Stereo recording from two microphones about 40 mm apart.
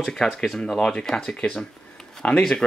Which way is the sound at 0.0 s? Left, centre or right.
Centre.